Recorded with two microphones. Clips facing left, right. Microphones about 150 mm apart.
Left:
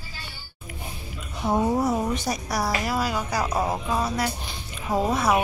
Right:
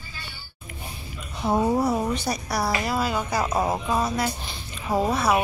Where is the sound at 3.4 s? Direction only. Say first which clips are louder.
Right 1 dB; 10° right (ahead or behind).